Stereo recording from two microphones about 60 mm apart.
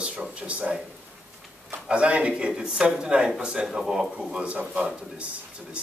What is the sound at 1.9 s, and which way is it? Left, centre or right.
A man's voice, centre.